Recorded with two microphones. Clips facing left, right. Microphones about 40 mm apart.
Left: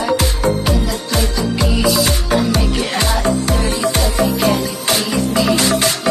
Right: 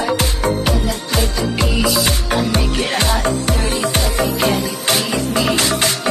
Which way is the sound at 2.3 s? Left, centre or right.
Right.